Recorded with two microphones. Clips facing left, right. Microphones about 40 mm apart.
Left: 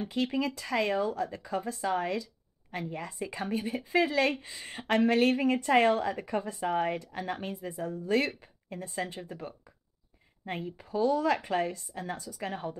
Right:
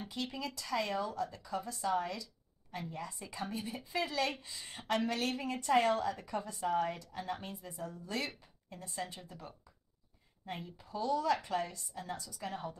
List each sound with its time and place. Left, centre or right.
0.1 s a woman's voice: left